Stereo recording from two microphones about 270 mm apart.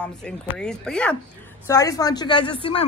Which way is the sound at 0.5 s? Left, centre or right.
Centre.